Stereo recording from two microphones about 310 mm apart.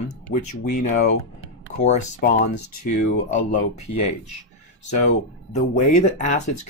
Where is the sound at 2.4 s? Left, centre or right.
Left.